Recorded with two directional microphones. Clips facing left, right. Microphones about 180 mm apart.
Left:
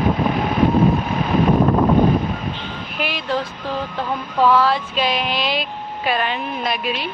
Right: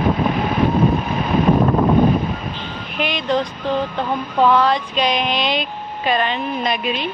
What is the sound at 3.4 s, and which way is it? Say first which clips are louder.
Speech: right 5 dB; 20° right (ahead or behind).